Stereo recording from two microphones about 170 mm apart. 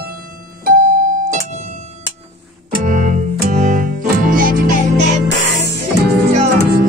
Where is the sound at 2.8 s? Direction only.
50° right (ahead or behind).